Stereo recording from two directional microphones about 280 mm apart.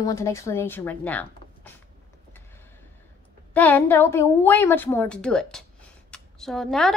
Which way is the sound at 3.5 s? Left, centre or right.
Centre.